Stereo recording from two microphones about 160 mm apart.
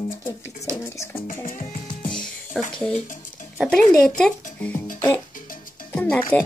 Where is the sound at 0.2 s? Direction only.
20° left (ahead or behind).